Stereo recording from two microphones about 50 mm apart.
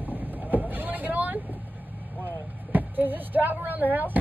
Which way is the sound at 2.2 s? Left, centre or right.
Right.